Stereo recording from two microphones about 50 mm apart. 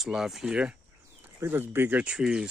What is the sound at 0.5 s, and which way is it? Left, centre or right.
Speech, right.